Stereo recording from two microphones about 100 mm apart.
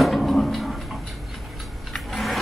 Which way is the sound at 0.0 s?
Centre (ahead or behind).